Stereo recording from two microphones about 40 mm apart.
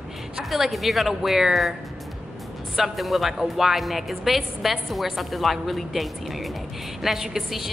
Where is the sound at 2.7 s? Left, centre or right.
Centre.